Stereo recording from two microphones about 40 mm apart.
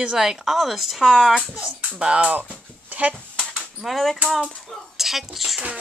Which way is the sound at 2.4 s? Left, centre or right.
Right.